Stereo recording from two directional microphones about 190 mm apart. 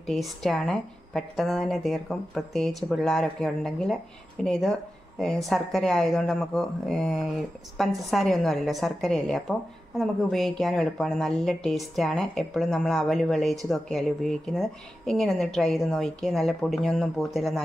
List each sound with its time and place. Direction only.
0.0 s a woman's voice: centre (ahead or behind)